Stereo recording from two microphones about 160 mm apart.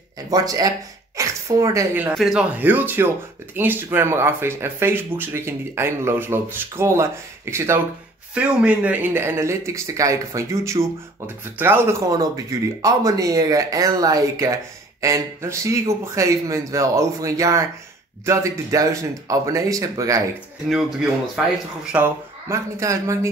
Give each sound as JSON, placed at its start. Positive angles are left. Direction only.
{"t": 0.3, "sound": "speech", "side_deg": -25}
{"t": 2.0, "sound": "speech", "side_deg": -5}
{"t": 21.9, "sound": "speech", "side_deg": -15}